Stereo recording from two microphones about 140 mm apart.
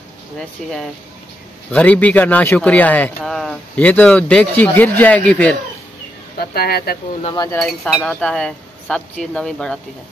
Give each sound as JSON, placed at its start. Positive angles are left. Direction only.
{"t": 0.6, "sound": "speech", "side_deg": 5}
{"t": 6.3, "sound": "speech", "side_deg": 90}
{"t": 7.5, "sound": "speech", "side_deg": 0}